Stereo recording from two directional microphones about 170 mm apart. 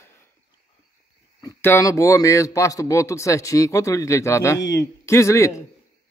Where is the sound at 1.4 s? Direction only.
15° left (ahead or behind).